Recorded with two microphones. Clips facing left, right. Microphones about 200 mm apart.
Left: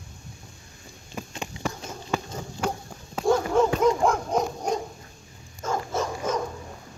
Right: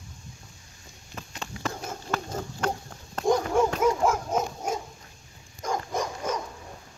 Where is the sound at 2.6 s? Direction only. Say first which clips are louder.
Left 1 dB; 10° left (ahead or behind).